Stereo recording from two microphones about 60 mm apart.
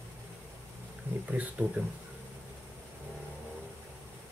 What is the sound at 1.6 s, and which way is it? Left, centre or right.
Speech, right.